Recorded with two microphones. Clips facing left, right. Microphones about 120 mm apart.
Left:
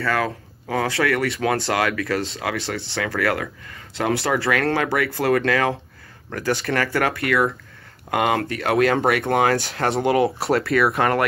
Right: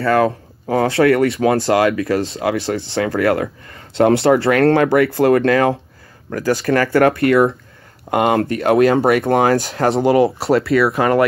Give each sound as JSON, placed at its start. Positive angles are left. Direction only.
{"t": 0.0, "sound": "speech", "side_deg": -30}
{"t": 5.5, "sound": "speech", "side_deg": -35}
{"t": 9.6, "sound": "speech", "side_deg": -45}
{"t": 9.8, "sound": "speech", "side_deg": -30}